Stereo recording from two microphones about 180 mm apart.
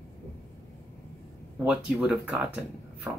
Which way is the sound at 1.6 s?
5° right (ahead or behind).